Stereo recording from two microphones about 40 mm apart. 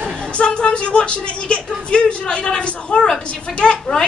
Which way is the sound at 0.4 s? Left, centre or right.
Left.